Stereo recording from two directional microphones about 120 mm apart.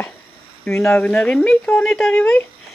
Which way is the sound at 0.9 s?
10° left (ahead or behind).